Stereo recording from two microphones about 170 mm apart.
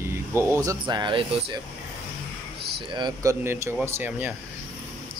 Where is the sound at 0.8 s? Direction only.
25° right (ahead or behind).